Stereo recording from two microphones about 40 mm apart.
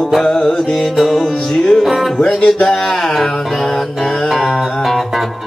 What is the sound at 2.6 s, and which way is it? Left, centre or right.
Music, centre.